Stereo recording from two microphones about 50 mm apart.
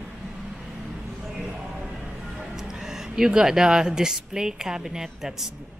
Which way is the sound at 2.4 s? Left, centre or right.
Centre.